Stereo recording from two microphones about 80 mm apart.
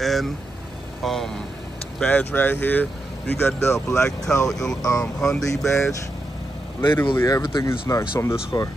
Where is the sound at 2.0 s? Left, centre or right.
Left.